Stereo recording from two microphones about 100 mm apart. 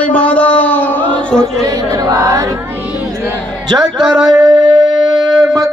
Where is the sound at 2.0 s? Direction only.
35° right (ahead or behind).